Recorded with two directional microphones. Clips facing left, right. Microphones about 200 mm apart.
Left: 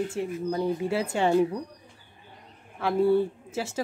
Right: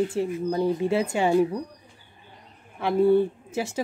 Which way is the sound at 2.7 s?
15° right (ahead or behind).